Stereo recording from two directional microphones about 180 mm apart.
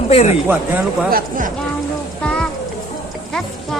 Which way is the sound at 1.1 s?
50° right (ahead or behind).